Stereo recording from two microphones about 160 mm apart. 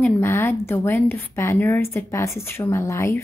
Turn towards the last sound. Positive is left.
turn(degrees=20)  # may be behind; listen again after turning